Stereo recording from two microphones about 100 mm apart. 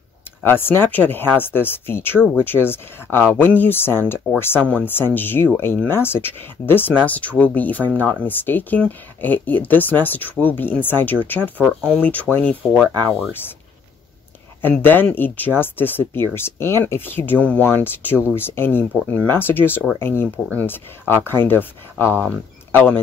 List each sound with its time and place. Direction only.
0.5 s speech: 25° left (ahead or behind)
14.6 s speech: 20° left (ahead or behind)